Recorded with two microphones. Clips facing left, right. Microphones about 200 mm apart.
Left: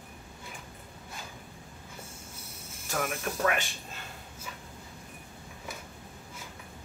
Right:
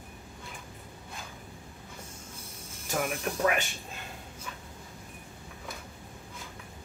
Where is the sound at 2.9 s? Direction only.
10° right (ahead or behind).